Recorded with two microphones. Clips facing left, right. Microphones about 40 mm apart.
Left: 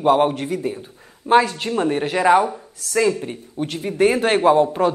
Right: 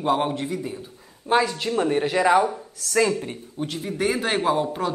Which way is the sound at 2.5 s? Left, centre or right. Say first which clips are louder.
Left 2 dB; centre.